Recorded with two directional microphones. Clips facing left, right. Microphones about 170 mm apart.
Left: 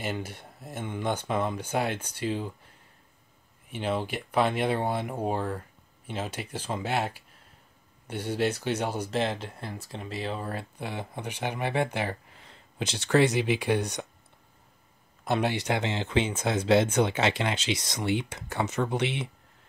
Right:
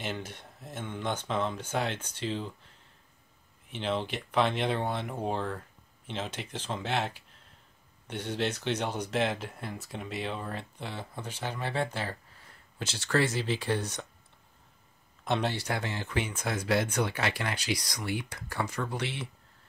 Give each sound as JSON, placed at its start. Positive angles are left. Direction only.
{"t": 0.0, "sound": "speech", "side_deg": 10}
{"t": 3.7, "sound": "speech", "side_deg": 10}
{"t": 15.2, "sound": "speech", "side_deg": 5}
{"t": 15.5, "sound": "speech", "side_deg": 20}